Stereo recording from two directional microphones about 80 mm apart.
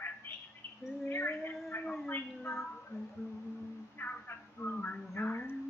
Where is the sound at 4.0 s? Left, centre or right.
Left.